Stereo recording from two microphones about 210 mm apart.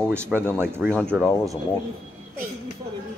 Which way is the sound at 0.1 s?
10° right (ahead or behind).